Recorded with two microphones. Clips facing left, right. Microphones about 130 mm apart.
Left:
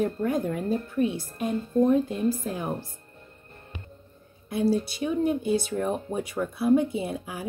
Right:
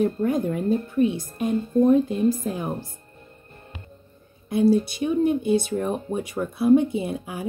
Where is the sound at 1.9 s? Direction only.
15° right (ahead or behind).